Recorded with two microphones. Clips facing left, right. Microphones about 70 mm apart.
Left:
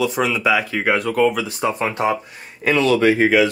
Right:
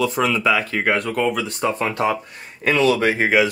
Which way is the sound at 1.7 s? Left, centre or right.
Centre.